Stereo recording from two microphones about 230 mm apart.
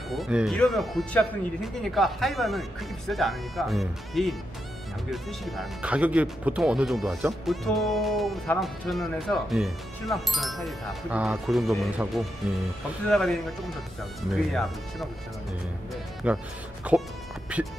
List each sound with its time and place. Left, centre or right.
0.1 s speech: centre
16.2 s speech: centre